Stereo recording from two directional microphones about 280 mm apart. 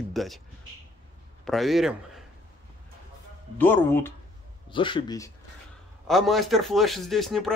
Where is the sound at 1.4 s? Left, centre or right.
Centre.